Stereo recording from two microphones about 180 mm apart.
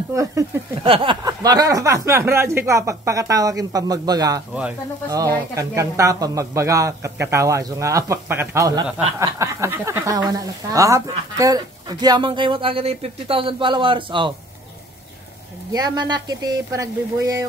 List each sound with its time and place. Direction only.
0.1 s speech: 15° right (ahead or behind)
0.8 s a sound: 30° right (ahead or behind)
1.2 s speech: 20° right (ahead or behind)
15.7 s speech: 20° right (ahead or behind)